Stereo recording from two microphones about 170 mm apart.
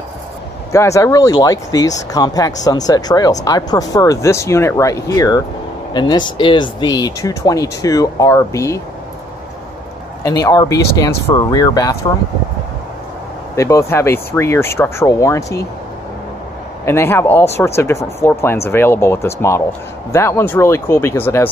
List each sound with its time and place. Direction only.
0.7 s speech: 15° left (ahead or behind)
10.2 s speech: 20° left (ahead or behind)
13.6 s speech: 15° left (ahead or behind)
16.8 s speech: 15° left (ahead or behind)